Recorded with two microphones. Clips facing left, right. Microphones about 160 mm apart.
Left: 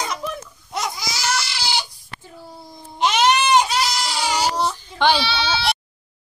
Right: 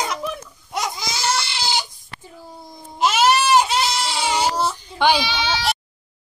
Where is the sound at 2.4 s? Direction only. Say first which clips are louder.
Even; 15° right (ahead or behind).